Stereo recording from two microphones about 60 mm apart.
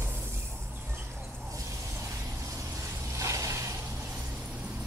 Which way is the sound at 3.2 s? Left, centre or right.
Right.